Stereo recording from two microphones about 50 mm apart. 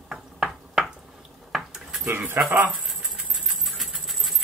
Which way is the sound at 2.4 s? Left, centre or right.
Right.